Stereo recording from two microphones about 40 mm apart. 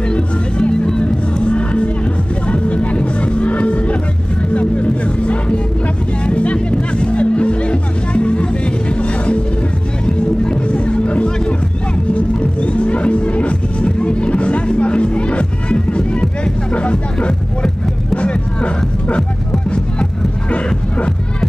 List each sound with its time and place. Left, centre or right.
0.1 s music: left
11.2 s music: left